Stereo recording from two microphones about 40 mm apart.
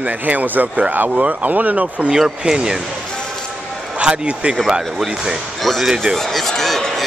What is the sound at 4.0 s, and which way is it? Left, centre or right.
Speech, right.